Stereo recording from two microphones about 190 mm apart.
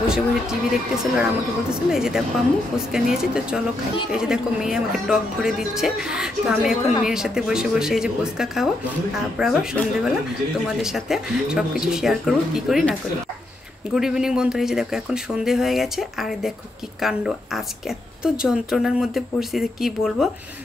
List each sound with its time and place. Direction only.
0.0 s speech: 5° right (ahead or behind)
13.9 s speech: 5° right (ahead or behind)